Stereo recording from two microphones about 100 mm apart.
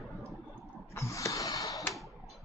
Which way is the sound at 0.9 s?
30° left (ahead or behind).